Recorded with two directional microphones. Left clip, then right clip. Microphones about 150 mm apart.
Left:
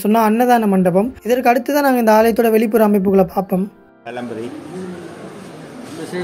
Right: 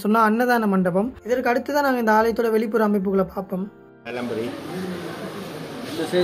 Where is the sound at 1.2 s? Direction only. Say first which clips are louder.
Left 7 dB; 25° left (ahead or behind).